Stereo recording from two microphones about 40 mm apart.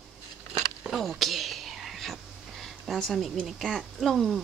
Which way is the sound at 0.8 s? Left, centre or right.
Right.